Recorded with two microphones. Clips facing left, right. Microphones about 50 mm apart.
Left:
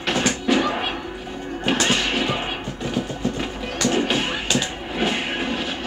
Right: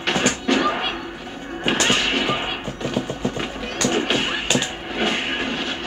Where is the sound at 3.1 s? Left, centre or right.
Centre.